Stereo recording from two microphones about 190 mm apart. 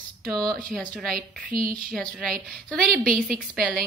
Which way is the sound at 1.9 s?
5° left (ahead or behind).